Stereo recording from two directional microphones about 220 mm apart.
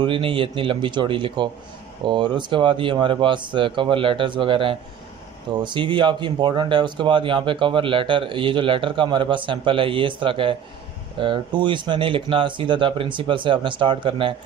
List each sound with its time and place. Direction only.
0.0 s speech: 25° right (ahead or behind)